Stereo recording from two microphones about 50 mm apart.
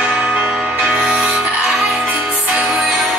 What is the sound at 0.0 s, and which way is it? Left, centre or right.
Change ringing, centre.